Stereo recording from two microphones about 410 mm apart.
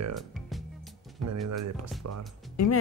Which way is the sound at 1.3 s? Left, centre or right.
Right.